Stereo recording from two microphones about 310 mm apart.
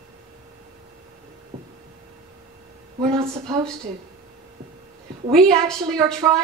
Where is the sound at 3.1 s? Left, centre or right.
Centre.